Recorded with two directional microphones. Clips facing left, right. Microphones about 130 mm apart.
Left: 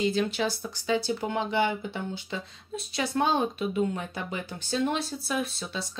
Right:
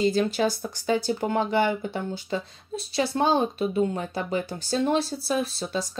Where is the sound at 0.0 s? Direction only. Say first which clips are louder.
Right 4 dB; 40° right (ahead or behind).